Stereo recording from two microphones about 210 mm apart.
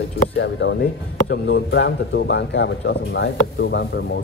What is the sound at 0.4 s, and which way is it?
A man's voice, 60° left (ahead or behind).